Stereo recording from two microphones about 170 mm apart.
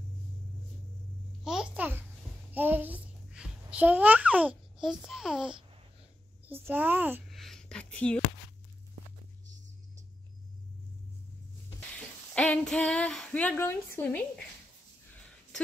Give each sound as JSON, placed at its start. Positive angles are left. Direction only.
{"t": 1.4, "sound": "babbling", "side_deg": -5}
{"t": 6.4, "sound": "a child's voice", "side_deg": -10}
{"t": 7.2, "sound": "a sound", "side_deg": 0}
{"t": 12.4, "sound": "a woman's voice", "side_deg": 5}